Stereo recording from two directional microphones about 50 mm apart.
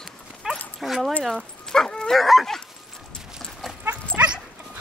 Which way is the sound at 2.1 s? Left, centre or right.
Centre.